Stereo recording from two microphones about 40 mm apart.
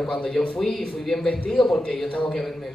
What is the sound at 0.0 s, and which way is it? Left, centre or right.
Speech, centre.